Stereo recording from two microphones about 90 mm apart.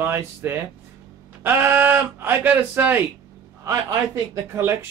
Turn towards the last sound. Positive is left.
turn(degrees=-25)  # may be behind; listen again after turning